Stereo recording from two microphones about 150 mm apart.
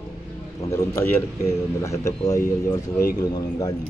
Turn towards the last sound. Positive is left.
turn(degrees=25)  # may be behind; listen again after turning